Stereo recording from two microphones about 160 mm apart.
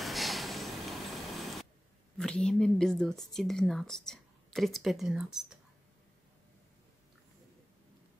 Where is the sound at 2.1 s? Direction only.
5° left (ahead or behind).